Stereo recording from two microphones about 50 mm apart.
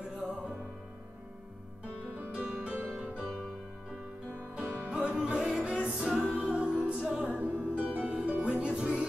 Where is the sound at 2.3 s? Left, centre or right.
Centre.